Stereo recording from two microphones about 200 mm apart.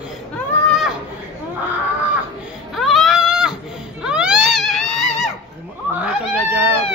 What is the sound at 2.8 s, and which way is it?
Baby cry, centre (ahead or behind).